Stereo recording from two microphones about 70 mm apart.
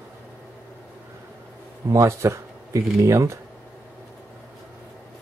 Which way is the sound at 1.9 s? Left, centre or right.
Right.